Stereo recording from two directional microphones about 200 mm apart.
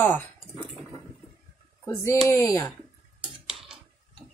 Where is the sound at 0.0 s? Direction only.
10° left (ahead or behind).